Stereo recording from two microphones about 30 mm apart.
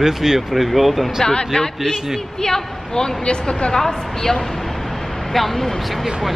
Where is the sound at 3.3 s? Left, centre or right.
Left.